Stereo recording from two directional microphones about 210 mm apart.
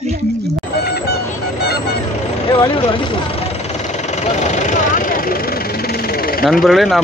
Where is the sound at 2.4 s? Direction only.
25° left (ahead or behind); by 6.4 s 45° left (ahead or behind).